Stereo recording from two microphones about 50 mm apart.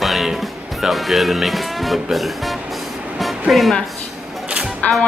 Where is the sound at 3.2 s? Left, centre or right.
Centre.